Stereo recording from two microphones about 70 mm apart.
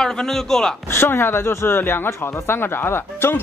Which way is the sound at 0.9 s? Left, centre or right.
Left.